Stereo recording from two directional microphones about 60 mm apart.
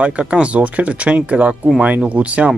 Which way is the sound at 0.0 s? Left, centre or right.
Centre.